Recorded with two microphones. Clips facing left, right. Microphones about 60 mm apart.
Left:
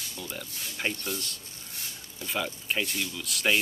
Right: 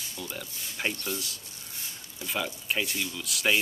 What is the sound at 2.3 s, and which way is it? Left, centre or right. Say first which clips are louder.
Speech: even; centre.